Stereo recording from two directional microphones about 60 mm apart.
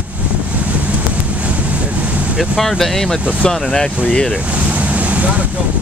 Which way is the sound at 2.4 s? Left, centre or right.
Centre.